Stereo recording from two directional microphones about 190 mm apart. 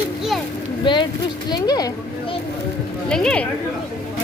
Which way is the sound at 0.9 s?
25° left (ahead or behind).